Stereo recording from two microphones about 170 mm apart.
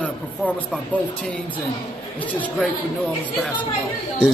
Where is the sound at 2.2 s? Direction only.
10° left (ahead or behind).